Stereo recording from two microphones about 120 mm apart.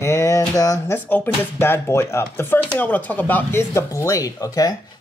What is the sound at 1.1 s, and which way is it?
Speech, 20° left (ahead or behind).